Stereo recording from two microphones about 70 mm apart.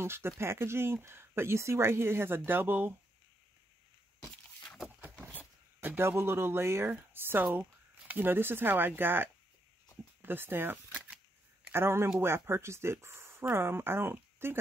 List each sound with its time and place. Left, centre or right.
0.0 s speech: right
5.8 s speech: right